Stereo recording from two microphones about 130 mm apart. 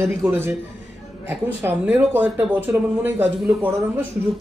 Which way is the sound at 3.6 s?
20° right (ahead or behind).